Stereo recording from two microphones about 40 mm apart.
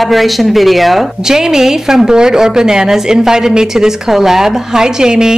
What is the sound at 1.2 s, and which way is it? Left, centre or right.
A woman's voice, centre.